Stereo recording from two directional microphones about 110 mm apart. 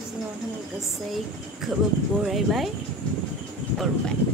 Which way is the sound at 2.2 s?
Centre (ahead or behind).